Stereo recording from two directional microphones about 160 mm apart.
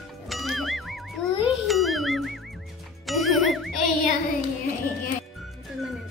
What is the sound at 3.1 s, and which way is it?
Jingle, centre (ahead or behind).